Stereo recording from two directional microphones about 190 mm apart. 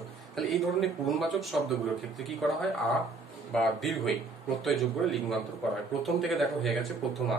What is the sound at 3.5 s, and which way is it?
Speech, centre (ahead or behind).